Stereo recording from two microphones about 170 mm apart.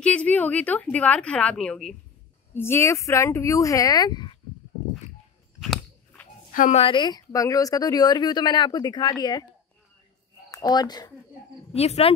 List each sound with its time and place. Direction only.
0.0 s a woman's voice: 5° left (ahead or behind)
2.5 s a woman's voice: 15° left (ahead or behind)
5.6 s chewing: centre (ahead or behind)
6.5 s speech: 50° left (ahead or behind)
6.8 s speech: 25° left (ahead or behind)
10.5 s speech: 20° left (ahead or behind)
11.7 s speech: 40° left (ahead or behind)